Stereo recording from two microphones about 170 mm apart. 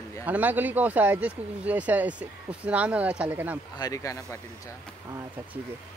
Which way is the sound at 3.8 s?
20° left (ahead or behind).